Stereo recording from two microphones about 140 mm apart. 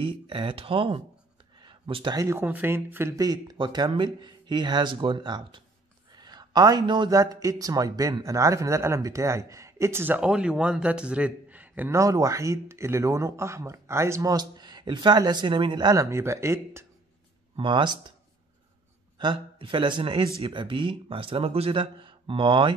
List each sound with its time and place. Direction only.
0.0 s speech: 40° right (ahead or behind)
1.6 s a sound: 35° right (ahead or behind)
2.1 s a man's voice: 20° right (ahead or behind)
17.6 s speech: 35° right (ahead or behind)
19.1 s speech: 35° right (ahead or behind)